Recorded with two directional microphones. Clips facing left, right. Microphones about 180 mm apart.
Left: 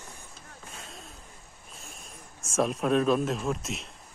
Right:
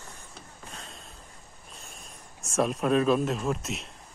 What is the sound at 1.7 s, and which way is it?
Speech, centre (ahead or behind).